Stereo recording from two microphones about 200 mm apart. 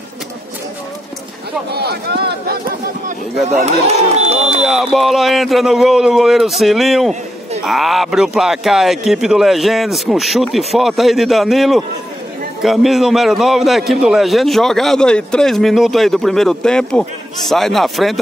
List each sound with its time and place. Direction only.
1.7 s speech: 55° right (ahead or behind)
3.8 s speech: 30° right (ahead or behind)
4.6 s a man's voice: centre (ahead or behind)